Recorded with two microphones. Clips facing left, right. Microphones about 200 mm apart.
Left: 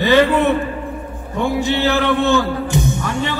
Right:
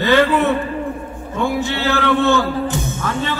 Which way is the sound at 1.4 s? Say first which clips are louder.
Left 2 dB; 15° left (ahead or behind).